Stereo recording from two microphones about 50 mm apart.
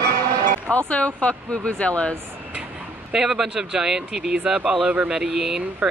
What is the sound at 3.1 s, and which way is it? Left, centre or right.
Speech, centre.